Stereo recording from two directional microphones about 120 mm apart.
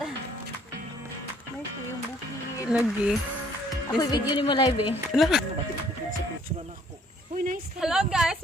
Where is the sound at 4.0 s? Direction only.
35° left (ahead or behind).